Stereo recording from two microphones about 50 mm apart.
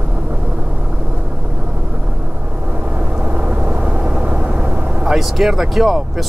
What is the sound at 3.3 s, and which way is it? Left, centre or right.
Vehicle, right.